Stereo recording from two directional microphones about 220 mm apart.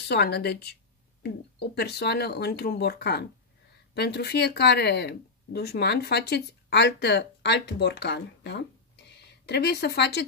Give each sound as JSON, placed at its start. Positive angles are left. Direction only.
{"t": 0.1, "sound": "speech", "side_deg": 50}
{"t": 1.8, "sound": "speech", "side_deg": 45}